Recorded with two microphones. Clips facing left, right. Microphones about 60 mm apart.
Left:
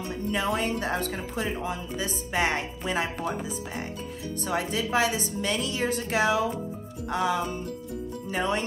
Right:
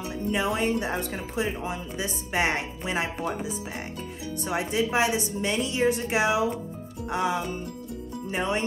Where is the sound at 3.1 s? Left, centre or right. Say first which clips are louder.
Even; centre.